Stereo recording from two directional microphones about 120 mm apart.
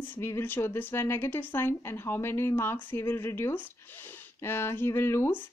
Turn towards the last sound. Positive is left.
turn(degrees=20)  # may be behind; listen again after turning